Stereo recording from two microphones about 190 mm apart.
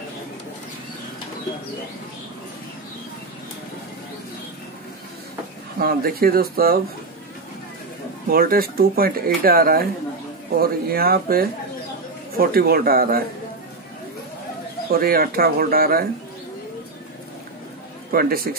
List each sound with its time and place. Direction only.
5.8 s speech: 50° right (ahead or behind)
8.3 s speech: 50° right (ahead or behind)
14.9 s speech: 50° right (ahead or behind)
18.1 s speech: 50° right (ahead or behind)